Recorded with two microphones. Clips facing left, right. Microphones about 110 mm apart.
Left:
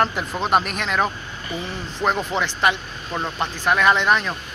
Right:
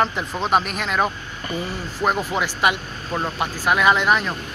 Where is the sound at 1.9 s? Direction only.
5° right (ahead or behind).